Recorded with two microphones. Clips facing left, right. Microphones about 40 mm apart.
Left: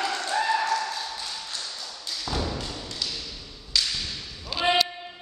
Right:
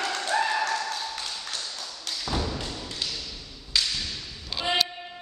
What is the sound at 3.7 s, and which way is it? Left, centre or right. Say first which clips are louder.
Thump: even; centre.